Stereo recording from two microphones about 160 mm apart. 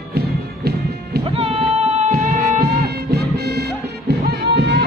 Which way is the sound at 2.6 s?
90° right.